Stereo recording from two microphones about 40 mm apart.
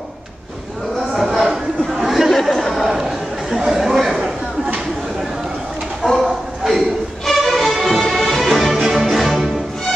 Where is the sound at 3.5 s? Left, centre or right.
Centre.